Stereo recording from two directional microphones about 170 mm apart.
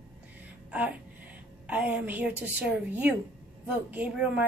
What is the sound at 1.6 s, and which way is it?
A woman's voice, 10° right (ahead or behind).